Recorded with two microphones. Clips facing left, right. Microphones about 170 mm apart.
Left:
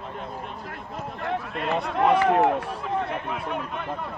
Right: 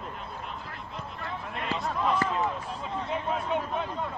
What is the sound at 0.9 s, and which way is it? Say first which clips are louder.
Run: left 9 dB; 65° left (ahead or behind).